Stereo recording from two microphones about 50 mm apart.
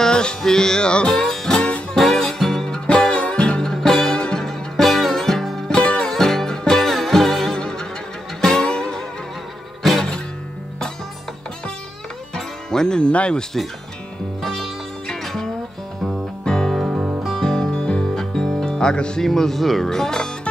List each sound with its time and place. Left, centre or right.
0.0 s music: centre
1.2 s music: centre
3.7 s music: centre
4.5 s music: centre
5.7 s music: left
6.0 s music: centre
7.5 s music: centre
12.4 s music: centre
14.4 s music: centre
16.7 s music: centre
17.2 s music: centre
19.2 s speech: centre